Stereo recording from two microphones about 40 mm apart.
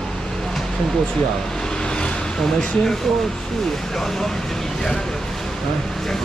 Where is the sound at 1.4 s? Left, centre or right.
Centre.